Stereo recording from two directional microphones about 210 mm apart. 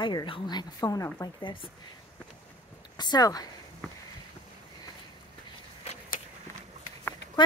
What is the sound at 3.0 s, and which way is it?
Speech, 20° left (ahead or behind).